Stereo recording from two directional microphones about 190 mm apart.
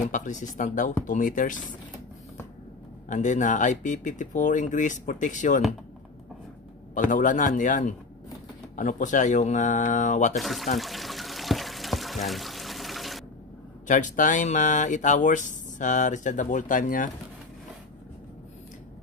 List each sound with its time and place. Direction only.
0.0 s a man's voice: 40° left (ahead or behind)
3.1 s speech: 40° left (ahead or behind)
6.9 s a man's voice: 40° left (ahead or behind)
10.3 s speech: centre (ahead or behind)
10.8 s pour: centre (ahead or behind)
13.8 s speech: 40° left (ahead or behind)